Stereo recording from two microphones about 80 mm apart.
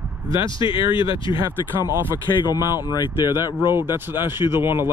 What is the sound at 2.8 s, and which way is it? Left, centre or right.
Speech, left.